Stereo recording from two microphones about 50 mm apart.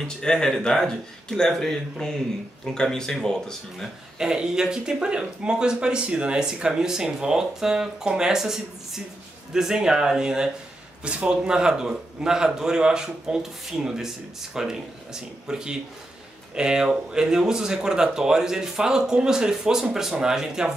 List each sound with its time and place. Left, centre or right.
0.2 s speech: centre
4.2 s speech: centre